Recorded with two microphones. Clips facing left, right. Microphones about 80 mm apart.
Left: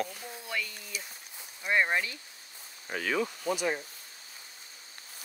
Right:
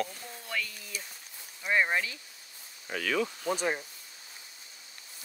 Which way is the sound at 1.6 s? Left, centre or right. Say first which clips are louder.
Even; centre.